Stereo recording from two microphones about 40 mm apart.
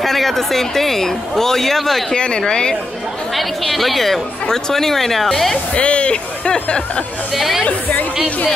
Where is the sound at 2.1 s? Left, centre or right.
Left.